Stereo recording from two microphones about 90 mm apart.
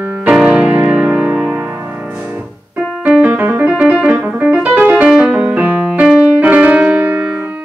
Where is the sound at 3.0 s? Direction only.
15° right (ahead or behind).